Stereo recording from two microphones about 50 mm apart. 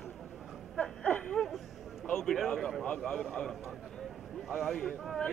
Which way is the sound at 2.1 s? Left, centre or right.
Centre.